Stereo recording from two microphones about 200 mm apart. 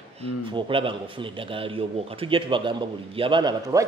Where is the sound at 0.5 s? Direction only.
25° right (ahead or behind).